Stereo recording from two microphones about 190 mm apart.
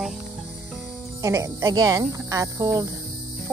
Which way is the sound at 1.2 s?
15° right (ahead or behind).